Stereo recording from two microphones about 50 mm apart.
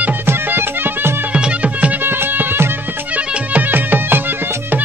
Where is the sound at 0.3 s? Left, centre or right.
Right.